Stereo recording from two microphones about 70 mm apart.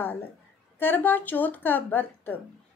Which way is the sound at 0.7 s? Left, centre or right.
Left.